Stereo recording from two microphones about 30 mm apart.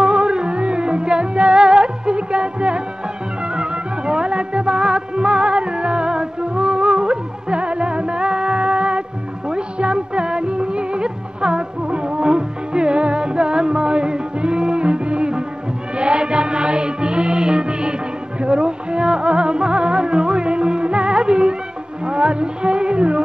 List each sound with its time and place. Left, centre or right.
0.0 s music: right